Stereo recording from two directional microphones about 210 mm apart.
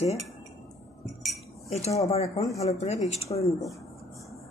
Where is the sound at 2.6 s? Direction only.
30° left (ahead or behind).